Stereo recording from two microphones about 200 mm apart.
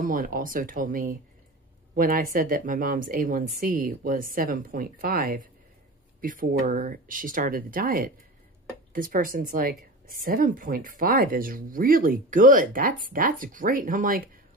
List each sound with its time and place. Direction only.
0.0 s speech: 45° right (ahead or behind)